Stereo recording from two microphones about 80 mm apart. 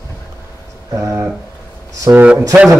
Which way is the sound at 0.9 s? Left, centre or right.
Right.